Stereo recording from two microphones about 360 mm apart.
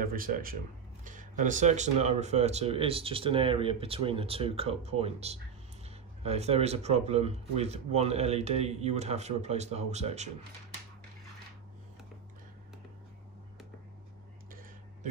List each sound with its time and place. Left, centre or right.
0.0 s speech: right